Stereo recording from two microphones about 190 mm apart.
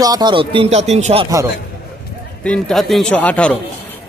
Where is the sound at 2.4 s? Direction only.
Centre (ahead or behind).